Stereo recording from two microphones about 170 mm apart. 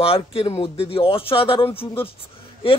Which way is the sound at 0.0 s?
35° left (ahead or behind).